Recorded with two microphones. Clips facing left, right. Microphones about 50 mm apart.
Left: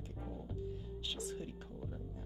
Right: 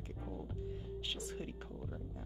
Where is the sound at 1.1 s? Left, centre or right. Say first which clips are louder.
Left 1 dB; right.